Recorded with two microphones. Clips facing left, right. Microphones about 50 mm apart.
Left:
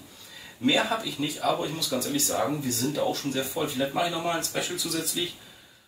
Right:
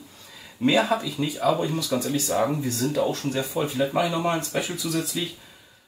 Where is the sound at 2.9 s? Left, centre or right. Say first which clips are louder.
Right 4 dB; right.